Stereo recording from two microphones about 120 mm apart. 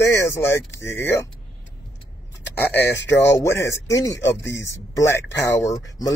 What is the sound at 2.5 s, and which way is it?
Speech, 20° left (ahead or behind).